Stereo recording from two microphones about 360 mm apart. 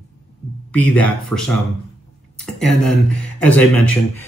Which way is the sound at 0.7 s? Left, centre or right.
Centre.